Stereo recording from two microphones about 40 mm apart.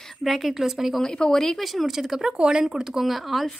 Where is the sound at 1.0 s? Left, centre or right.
Centre.